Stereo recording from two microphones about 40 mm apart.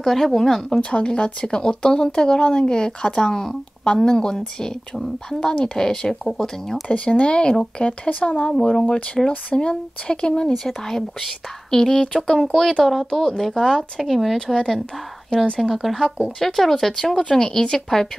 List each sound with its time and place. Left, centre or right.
0.0 s speech: centre
0.7 s speech: left
4.9 s speech: centre
5.4 s speech: left
5.8 s speech: centre
6.9 s speech: left
8.5 s speech: centre
10.6 s speech: centre
15.6 s speech: centre
16.9 s speech: centre